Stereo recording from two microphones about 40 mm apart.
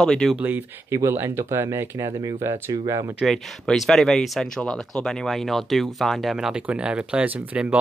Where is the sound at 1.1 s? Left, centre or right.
Right.